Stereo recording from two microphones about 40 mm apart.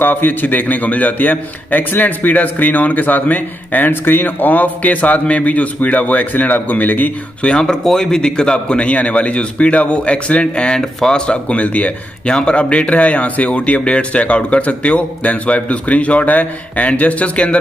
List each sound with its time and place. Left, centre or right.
0.0 s a man's voice: left
7.5 s a man's voice: centre; by 10.8 s left
10.8 s speech: centre
11.2 s a man's voice: left
12.3 s speech: left